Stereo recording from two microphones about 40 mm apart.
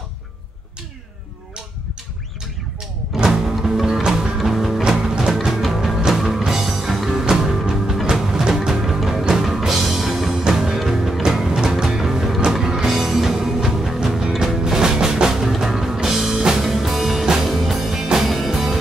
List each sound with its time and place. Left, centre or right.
3.3 s music: centre
3.9 s music: centre
4.4 s music: centre
4.8 s music: centre